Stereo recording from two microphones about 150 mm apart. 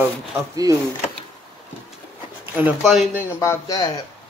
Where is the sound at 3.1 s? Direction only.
20° left (ahead or behind).